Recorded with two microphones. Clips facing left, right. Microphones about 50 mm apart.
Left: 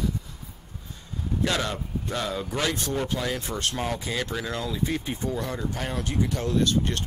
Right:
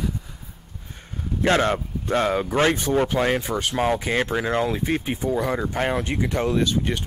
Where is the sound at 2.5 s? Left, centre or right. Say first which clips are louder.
Right 7 dB; right.